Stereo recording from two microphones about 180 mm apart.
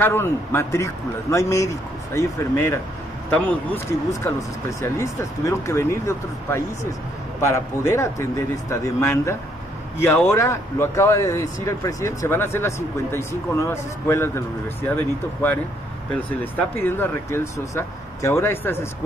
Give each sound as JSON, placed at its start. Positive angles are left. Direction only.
{"t": 0.0, "sound": "speech", "side_deg": 10}
{"t": 16.3, "sound": "speech", "side_deg": 10}